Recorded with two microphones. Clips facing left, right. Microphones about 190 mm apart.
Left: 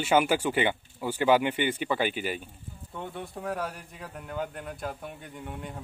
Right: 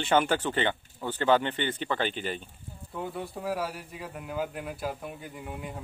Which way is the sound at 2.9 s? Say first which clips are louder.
Right 2 dB; 5° right (ahead or behind).